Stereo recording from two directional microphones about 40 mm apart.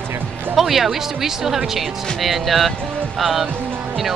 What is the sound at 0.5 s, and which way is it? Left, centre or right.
Speech, centre.